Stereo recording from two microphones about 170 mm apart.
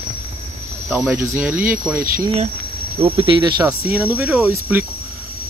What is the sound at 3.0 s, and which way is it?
Cricket, 30° right (ahead or behind).